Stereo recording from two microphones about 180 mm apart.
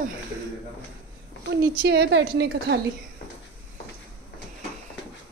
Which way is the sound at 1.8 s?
80° right.